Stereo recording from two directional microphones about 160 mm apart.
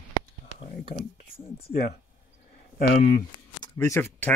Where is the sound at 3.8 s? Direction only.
15° left (ahead or behind).